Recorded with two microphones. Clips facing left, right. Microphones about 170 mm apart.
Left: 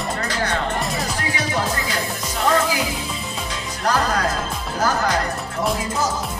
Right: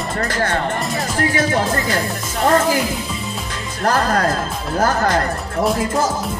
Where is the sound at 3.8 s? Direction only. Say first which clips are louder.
Right 4 dB; 50° right (ahead or behind).